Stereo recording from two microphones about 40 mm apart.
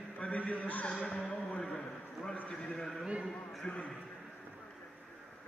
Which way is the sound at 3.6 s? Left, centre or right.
Left.